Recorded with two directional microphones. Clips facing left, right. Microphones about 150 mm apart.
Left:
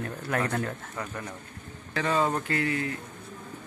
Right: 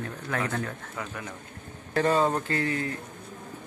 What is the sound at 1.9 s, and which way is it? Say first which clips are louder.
Speech: right 3 dB; 40° right (ahead or behind).